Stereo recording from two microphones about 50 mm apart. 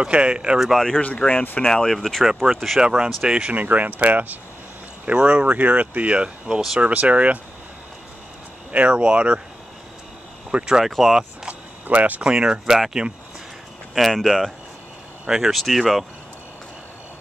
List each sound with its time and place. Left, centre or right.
0.0 s speech: centre
0.6 s speech: centre
1.0 s speech: left
1.7 s speech: centre
2.8 s speech: centre
3.4 s speech: right
8.7 s speech: right
10.5 s speech: centre
10.9 s speech: centre
11.9 s speech: right
12.3 s speech: centre
13.9 s speech: centre
15.2 s speech: centre